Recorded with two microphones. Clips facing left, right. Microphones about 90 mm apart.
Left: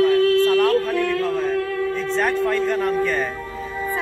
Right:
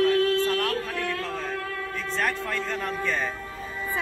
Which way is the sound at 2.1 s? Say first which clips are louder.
Left 7 dB; 20° left (ahead or behind).